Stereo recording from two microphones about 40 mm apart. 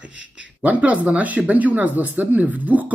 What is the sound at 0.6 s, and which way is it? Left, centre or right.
Speech, right.